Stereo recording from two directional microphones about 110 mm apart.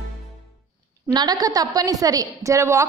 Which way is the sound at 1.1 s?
40° right (ahead or behind).